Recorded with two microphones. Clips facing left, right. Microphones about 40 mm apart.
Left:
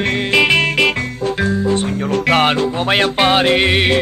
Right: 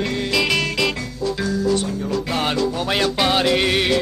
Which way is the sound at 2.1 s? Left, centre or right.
Left.